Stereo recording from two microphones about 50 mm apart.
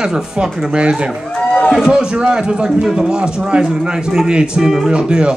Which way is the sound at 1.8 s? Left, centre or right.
Centre.